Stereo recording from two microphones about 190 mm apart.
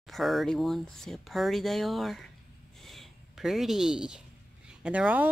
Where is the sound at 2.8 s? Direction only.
Centre (ahead or behind).